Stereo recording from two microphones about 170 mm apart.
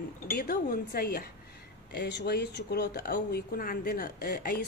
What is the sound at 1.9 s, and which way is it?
Speech, 80° left.